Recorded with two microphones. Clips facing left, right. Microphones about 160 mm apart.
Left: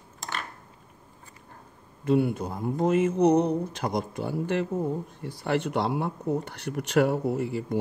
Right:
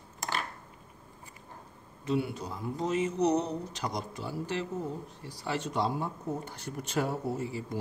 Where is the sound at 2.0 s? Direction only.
55° left (ahead or behind).